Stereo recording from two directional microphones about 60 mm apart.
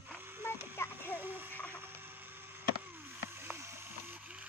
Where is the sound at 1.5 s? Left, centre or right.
Left.